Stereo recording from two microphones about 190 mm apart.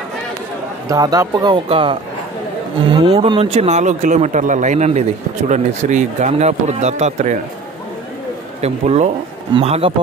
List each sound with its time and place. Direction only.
0.8 s speech: 20° right (ahead or behind); by 7.3 s 35° right (ahead or behind)
8.5 s speech: 35° right (ahead or behind)